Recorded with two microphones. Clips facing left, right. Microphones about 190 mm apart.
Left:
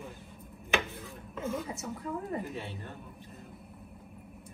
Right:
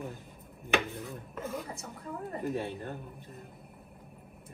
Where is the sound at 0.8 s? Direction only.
15° right (ahead or behind).